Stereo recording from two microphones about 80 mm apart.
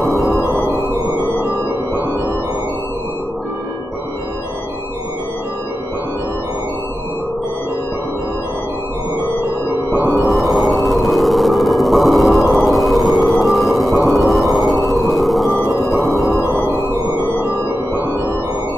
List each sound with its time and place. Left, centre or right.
0.0 s music: centre
1.5 s music: right
10.2 s sonar: centre